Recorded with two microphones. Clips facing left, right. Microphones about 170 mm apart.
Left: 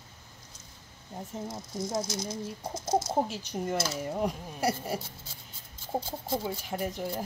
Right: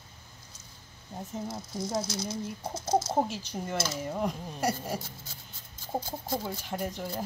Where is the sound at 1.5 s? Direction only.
20° left (ahead or behind).